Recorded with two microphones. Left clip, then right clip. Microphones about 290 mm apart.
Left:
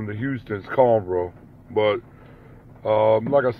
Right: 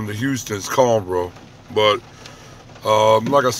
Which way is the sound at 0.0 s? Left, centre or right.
Centre.